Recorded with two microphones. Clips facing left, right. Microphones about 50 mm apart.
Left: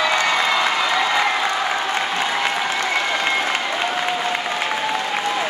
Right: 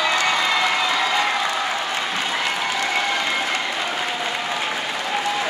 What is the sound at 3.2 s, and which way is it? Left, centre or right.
Applause, left.